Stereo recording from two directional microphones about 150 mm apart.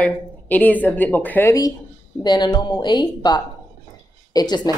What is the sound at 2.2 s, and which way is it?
Speech, 30° left (ahead or behind).